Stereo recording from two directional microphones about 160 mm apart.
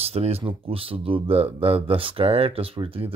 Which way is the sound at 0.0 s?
40° right (ahead or behind).